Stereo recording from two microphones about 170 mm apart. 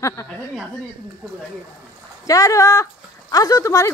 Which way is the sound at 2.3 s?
20° left (ahead or behind).